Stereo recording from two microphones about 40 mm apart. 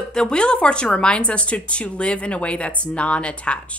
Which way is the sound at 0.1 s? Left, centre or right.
Centre.